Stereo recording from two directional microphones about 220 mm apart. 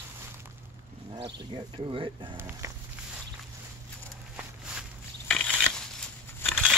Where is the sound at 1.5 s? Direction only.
20° right (ahead or behind).